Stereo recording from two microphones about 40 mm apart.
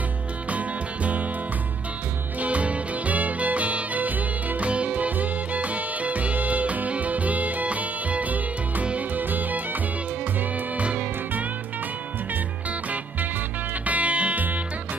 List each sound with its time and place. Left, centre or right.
0.5 s music: right
2.4 s music: right
10.8 s music: right
13.8 s music: right